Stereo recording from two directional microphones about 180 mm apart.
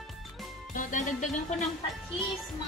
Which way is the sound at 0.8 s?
45° left (ahead or behind).